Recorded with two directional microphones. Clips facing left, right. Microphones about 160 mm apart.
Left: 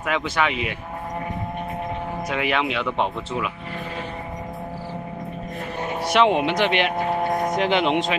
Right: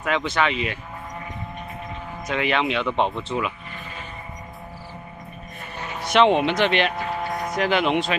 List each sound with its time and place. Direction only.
0.0 s speech: 10° left (ahead or behind)
2.2 s speech: 5° left (ahead or behind)
6.0 s speech: 10° left (ahead or behind)
7.0 s vehicle: 50° left (ahead or behind)
7.5 s speech: 20° left (ahead or behind)